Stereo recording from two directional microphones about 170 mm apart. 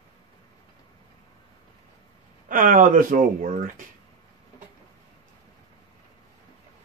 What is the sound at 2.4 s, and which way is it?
Speech, 55° right (ahead or behind).